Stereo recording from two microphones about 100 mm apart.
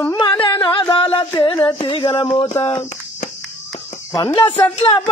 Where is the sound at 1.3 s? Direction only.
45° left (ahead or behind).